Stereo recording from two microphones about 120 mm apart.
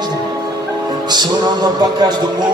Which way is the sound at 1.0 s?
35° right (ahead or behind).